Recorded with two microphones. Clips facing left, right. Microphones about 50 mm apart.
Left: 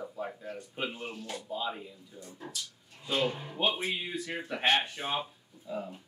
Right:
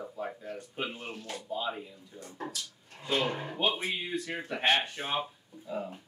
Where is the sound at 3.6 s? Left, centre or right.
Centre.